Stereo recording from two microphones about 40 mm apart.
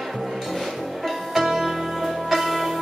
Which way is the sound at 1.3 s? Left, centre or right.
Centre.